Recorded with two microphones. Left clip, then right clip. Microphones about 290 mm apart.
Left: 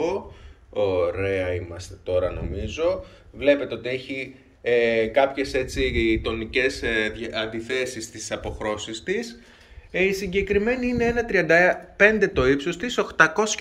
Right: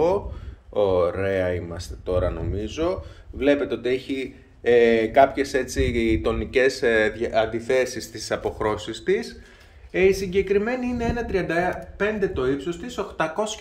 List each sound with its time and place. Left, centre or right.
0.7 s speech: right; by 13.6 s centre